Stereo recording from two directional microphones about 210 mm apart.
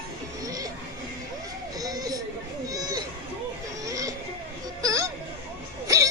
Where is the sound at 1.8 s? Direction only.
15° right (ahead or behind).